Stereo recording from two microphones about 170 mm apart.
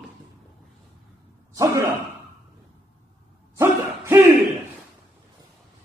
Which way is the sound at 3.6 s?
15° right (ahead or behind).